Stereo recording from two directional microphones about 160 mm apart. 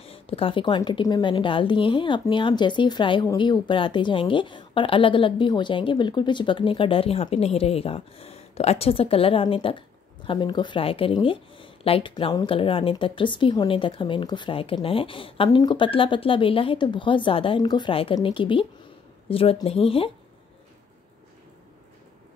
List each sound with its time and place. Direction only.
0.0 s speech: 35° left (ahead or behind)